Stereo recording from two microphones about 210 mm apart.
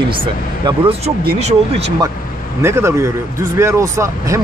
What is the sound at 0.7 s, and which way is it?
Speech, 25° right (ahead or behind).